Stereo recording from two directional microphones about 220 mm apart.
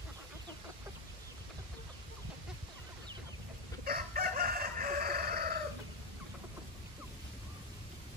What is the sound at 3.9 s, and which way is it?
Chicken, 40° right (ahead or behind).